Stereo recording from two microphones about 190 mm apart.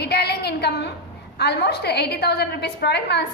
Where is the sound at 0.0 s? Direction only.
60° left (ahead or behind).